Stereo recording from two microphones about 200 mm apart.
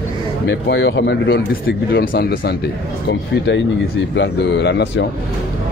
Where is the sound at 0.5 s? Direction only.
60° left (ahead or behind).